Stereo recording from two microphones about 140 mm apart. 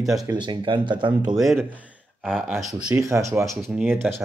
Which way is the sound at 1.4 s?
Centre (ahead or behind).